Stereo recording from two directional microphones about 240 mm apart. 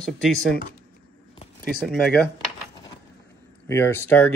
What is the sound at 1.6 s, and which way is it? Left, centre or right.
Speech, centre.